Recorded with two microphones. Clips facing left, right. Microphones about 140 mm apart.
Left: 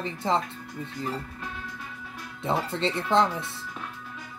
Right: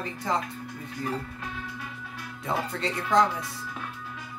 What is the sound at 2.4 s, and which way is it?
Speech, 25° left (ahead or behind).